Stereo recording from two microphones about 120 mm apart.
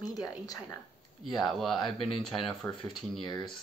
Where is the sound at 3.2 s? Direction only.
40° left (ahead or behind).